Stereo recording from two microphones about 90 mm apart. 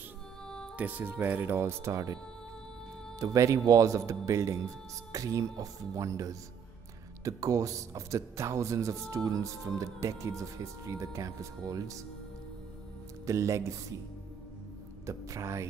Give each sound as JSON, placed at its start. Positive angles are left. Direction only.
{"t": 0.7, "sound": "speech", "side_deg": -20}
{"t": 3.2, "sound": "speech", "side_deg": -35}
{"t": 13.2, "sound": "speech", "side_deg": -35}
{"t": 15.0, "sound": "speech", "side_deg": -35}